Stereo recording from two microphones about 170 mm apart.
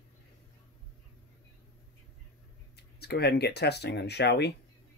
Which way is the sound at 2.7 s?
70° left (ahead or behind).